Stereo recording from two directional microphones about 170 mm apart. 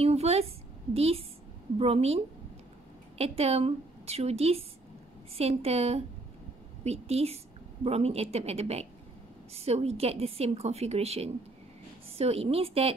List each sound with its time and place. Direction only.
0.0 s a sound: 35° right (ahead or behind)
0.9 s a woman's voice: 35° right (ahead or behind)
3.2 s a woman's voice: 35° right (ahead or behind)